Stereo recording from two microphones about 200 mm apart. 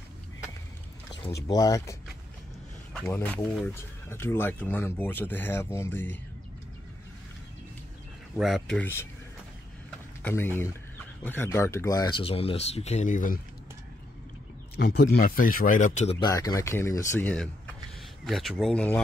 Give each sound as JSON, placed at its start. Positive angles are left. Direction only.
{"t": 1.2, "sound": "speech", "side_deg": 15}
{"t": 2.9, "sound": "speech", "side_deg": 5}
{"t": 8.4, "sound": "speech", "side_deg": 0}
{"t": 10.2, "sound": "speech", "side_deg": 10}
{"t": 14.8, "sound": "speech", "side_deg": 55}
{"t": 16.2, "sound": "speech", "side_deg": 20}